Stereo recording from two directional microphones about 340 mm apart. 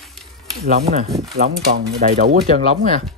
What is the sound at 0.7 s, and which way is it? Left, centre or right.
Speech, centre.